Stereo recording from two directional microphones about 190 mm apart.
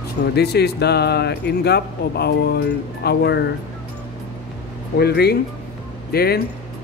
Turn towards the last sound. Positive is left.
turn(degrees=55)  # may be behind; listen again after turning